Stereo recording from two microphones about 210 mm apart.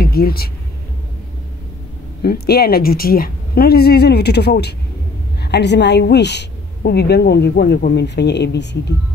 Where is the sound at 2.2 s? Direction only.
45° left (ahead or behind).